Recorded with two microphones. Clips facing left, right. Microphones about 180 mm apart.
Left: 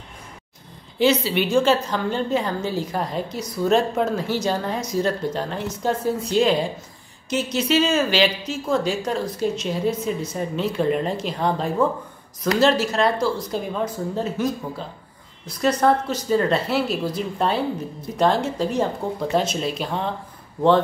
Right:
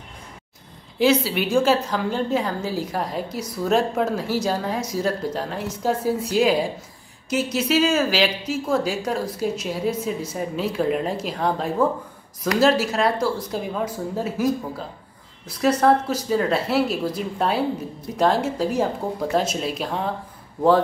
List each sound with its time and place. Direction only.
0.9 s a woman's voice: centre (ahead or behind)